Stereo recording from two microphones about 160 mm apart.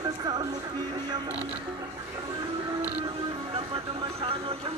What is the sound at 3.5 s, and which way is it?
Speech, 35° right (ahead or behind).